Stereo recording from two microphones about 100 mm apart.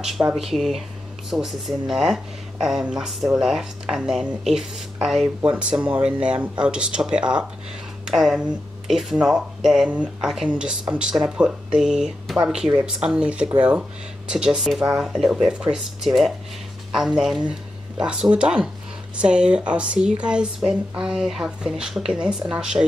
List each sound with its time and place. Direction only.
0.4 s speech: centre (ahead or behind)